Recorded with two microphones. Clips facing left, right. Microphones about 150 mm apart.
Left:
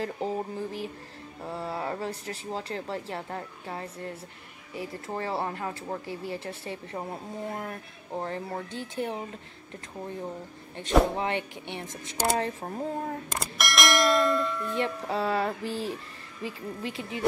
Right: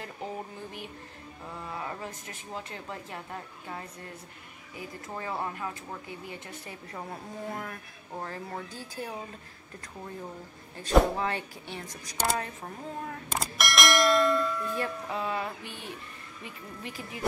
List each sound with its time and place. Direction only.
0.0 s speech: 35° left (ahead or behind)
10.8 s speech: 20° left (ahead or behind)
13.4 s bell: centre (ahead or behind)
14.8 s speech: 35° left (ahead or behind)